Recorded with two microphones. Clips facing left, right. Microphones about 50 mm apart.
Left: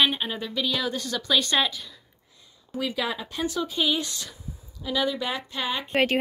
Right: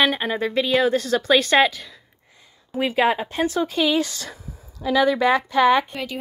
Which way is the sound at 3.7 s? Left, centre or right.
Right.